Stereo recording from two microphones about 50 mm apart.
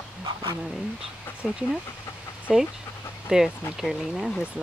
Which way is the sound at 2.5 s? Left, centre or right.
Centre.